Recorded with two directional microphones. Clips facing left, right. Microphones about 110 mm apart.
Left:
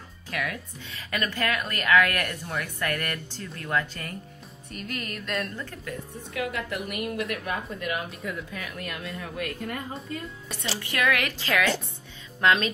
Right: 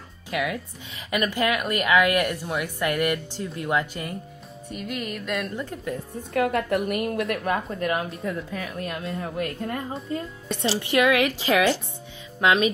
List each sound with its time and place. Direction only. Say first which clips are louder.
0.5 s speech: right 5 dB; 15° right (ahead or behind)
3.4 s music: right 8 dB; 5° right (ahead or behind)
3.7 s speech: right 2 dB; 15° right (ahead or behind)
4.6 s music: right 4 dB; 5° right (ahead or behind)
5.6 s speech: right 6 dB; 15° right (ahead or behind)
6.3 s a woman's voice: right 8 dB; 50° right (ahead or behind)
7.2 s speech: right 5 dB; 35° right (ahead or behind); by 12.7 s 10° right (ahead or behind)